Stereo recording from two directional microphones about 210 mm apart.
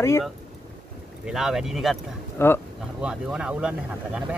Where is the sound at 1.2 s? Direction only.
Centre (ahead or behind).